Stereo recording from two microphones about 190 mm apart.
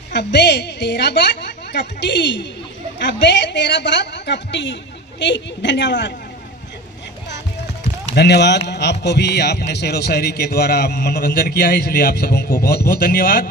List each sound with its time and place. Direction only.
0.1 s a man's voice: 65° left (ahead or behind)
8.1 s a man's voice: 65° left (ahead or behind)